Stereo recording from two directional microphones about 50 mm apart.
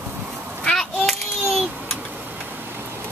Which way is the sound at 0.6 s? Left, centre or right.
Centre.